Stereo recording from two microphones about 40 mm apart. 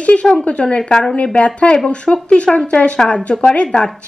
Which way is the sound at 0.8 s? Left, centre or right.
Centre.